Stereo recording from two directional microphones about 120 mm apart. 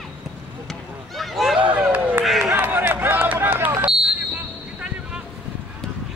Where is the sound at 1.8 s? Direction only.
15° right (ahead or behind).